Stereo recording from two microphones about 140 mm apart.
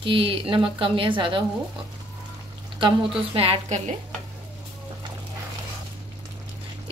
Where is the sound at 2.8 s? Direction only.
40° right (ahead or behind).